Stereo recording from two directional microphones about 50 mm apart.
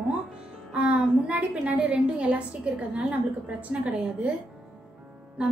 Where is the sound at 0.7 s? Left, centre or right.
Right.